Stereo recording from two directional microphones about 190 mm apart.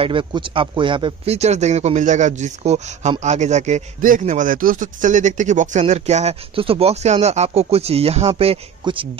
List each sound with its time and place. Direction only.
0.0 s a man's voice: 25° right (ahead or behind)